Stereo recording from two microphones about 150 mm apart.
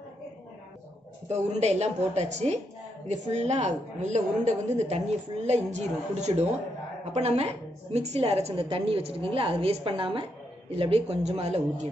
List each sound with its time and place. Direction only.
1.3 s a woman's voice: 50° right (ahead or behind)